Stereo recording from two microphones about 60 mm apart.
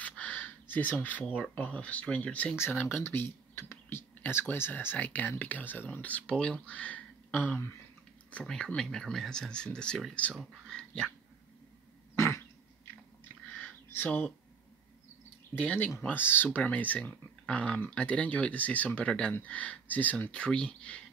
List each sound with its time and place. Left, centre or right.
0.0 s a sound: left
1.6 s speech: left
2.5 s speech: left
4.9 s speech: left
6.3 s speech: centre
6.6 s speech: left
8.5 s speech: centre
10.7 s dog: centre
12.2 s cough: left
14.0 s speech: left
15.5 s speech: left
16.1 s speech: left; by 21.0 s centre